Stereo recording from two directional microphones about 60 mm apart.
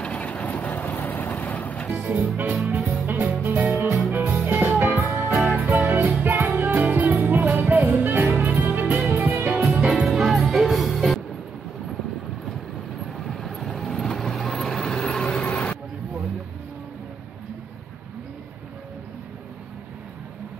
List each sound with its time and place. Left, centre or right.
0.0 s vehicle: left
1.9 s music: right
9.7 s music: centre
9.9 s music: centre
13.3 s vehicle: centre; by 15.8 s left